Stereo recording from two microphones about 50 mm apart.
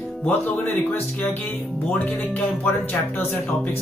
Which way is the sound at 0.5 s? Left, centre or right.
Left.